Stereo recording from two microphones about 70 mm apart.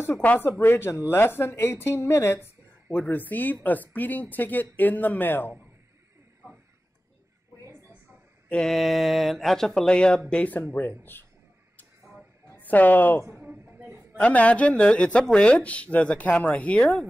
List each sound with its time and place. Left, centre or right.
0.2 s speech: left
2.9 s speech: left
8.5 s mantra: centre
8.7 s speech: centre; by 11.2 s left
12.5 s speech: left